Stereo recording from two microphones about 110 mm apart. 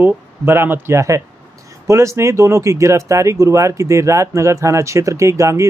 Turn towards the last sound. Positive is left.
turn(degrees=-25)  # may be behind; listen again after turning